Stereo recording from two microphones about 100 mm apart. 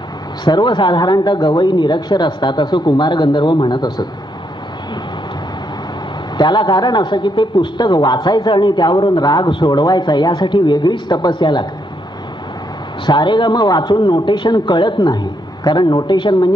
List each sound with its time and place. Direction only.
0.5 s speech: 50° left (ahead or behind)
6.3 s speech: 50° left (ahead or behind)
13.0 s speech: 50° left (ahead or behind)